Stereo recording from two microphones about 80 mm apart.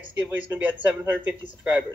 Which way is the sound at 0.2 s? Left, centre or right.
Right.